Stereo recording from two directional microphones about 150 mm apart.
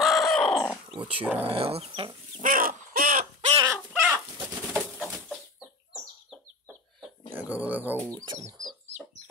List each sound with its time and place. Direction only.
0.0 s a sound: centre (ahead or behind)
1.0 s speech: 10° right (ahead or behind)
1.4 s speech: 40° right (ahead or behind)
2.4 s crow: 70° right (ahead or behind)
3.3 s chicken: 40° right (ahead or behind)
3.6 s bird: 15° right (ahead or behind)
7.3 s speech: 10° right (ahead or behind)
8.1 s speech: 25° right (ahead or behind)